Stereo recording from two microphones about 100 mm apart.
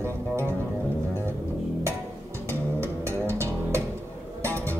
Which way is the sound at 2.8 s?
25° right (ahead or behind).